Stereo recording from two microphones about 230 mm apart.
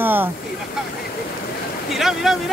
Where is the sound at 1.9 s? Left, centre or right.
Centre.